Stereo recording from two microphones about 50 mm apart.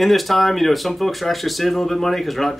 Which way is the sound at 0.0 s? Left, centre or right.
Centre.